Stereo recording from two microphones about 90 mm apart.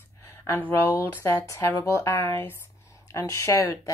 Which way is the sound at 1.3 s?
35° left (ahead or behind).